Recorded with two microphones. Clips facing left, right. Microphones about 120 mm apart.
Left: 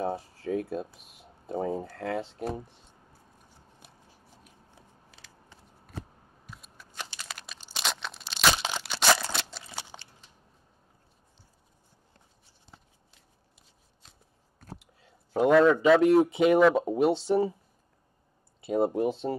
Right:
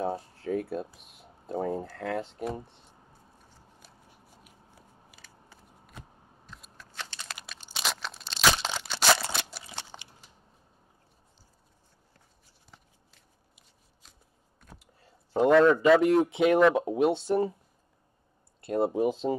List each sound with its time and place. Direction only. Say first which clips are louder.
0.0 s speech: even; centre (ahead or behind)
2.5 s a sound: left 1 dB; centre (ahead or behind)
4.3 s biting: even; 5° right (ahead or behind)
6.4 s computer keyboard: left 1 dB; 5° left (ahead or behind)
7.3 s a sound: even; centre (ahead or behind)
14.8 s a sound: even; centre (ahead or behind)
16.3 s speech: left 1 dB; centre (ahead or behind)
18.6 s speech: left 1 dB; centre (ahead or behind)
19.0 s speech: right 2 dB; 15° right (ahead or behind)